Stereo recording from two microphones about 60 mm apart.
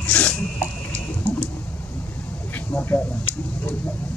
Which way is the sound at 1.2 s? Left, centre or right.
Left.